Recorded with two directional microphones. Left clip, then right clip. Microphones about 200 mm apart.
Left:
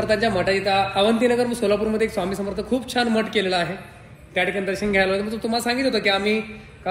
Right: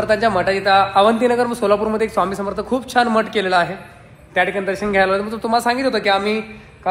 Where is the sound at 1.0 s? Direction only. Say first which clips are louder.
Right 5 dB; centre (ahead or behind).